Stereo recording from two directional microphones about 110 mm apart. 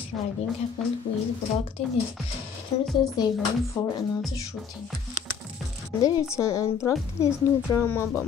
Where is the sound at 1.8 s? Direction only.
65° left (ahead or behind).